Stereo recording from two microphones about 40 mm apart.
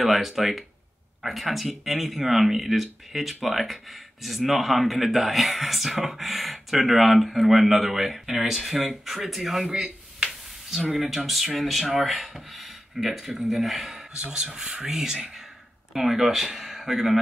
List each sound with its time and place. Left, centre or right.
0.0 s speech: centre
11.0 s speech: centre
14.3 s speech: centre